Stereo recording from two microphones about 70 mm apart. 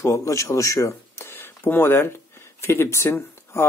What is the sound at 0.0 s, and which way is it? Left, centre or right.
Speech, left.